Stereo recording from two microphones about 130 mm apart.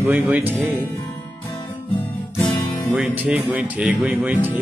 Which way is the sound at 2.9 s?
10° right (ahead or behind).